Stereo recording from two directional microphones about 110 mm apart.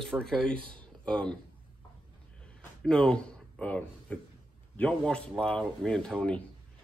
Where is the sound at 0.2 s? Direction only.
10° left (ahead or behind).